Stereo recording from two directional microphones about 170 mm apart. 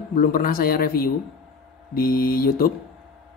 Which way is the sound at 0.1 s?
55° left (ahead or behind).